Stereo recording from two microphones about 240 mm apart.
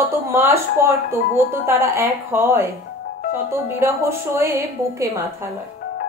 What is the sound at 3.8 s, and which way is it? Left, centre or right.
Speech, centre.